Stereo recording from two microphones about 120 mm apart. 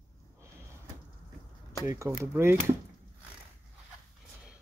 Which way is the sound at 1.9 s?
25° right (ahead or behind).